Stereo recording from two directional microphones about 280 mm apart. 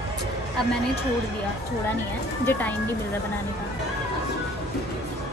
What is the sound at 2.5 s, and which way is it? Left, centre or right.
Speech, centre.